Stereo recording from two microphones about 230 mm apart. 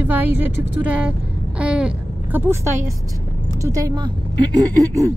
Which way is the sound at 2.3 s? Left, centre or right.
Centre.